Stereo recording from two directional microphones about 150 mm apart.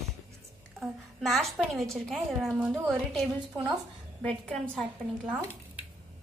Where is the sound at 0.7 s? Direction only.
Centre (ahead or behind).